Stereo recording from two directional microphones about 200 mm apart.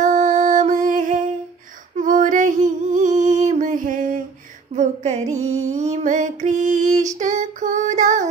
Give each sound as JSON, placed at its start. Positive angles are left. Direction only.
{"t": 0.0, "sound": "music", "side_deg": -35}
{"t": 2.0, "sound": "female singing", "side_deg": -40}
{"t": 5.4, "sound": "music", "side_deg": -90}
{"t": 5.7, "sound": "a sound", "side_deg": -35}